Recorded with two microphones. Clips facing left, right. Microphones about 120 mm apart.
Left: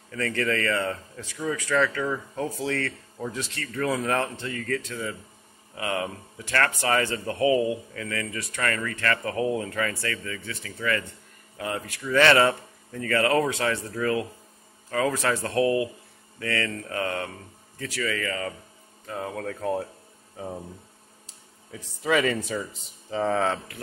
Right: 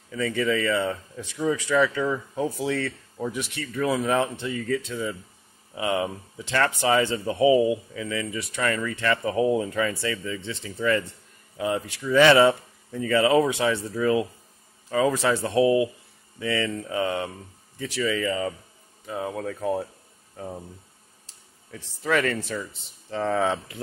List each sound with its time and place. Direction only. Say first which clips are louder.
0.1 s speech: right 2 dB; 5° right (ahead or behind)
1.2 s speech: right 5 dB; 20° right (ahead or behind); by 19.9 s 5° right (ahead or behind)
20.3 s speech: left 1 dB; 10° left (ahead or behind)
22.0 s speech: left 1 dB; 5° left (ahead or behind)
23.4 s speech: right 1 dB; 15° right (ahead or behind)